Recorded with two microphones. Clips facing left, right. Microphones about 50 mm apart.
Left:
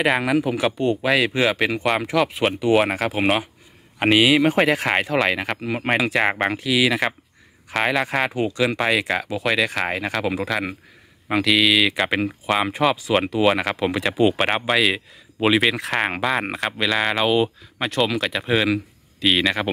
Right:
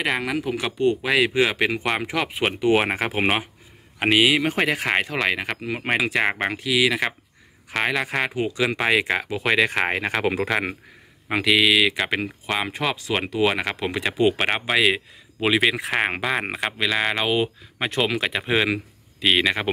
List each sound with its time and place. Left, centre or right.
0.0 s speech: centre; by 3.3 s right
4.0 s speech: centre; by 10.5 s right
11.2 s speech: centre
11.9 s speech: centre
17.3 s speech: centre